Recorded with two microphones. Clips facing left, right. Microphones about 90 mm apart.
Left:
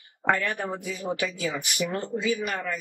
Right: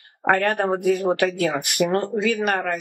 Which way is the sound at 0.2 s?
50° right (ahead or behind).